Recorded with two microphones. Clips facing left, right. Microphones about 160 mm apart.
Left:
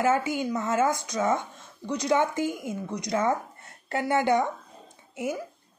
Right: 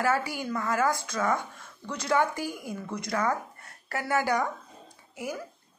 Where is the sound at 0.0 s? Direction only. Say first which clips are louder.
Left 3 dB; 20° left (ahead or behind).